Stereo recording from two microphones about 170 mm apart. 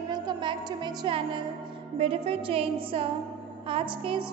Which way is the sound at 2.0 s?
35° right (ahead or behind).